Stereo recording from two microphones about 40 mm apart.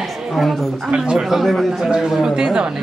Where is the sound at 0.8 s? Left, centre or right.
Right.